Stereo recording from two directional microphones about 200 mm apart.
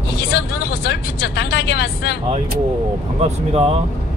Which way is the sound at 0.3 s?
50° left (ahead or behind).